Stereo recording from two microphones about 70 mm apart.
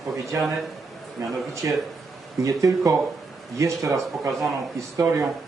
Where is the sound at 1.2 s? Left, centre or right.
Right.